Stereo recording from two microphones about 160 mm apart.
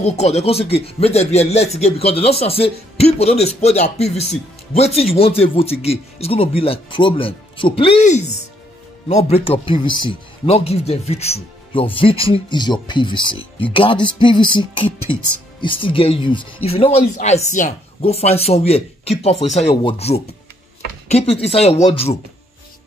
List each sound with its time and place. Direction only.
0.0 s speech: 40° left (ahead or behind)